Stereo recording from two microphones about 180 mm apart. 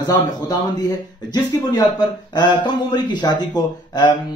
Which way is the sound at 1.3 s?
20° left (ahead or behind).